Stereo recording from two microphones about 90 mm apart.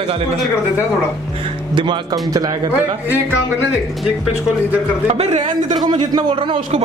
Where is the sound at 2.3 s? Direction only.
40° right (ahead or behind).